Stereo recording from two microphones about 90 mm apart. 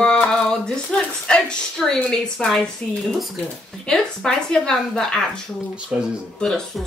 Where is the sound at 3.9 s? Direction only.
10° left (ahead or behind).